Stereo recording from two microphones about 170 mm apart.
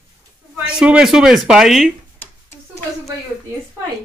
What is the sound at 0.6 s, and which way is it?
Speech, 5° right (ahead or behind).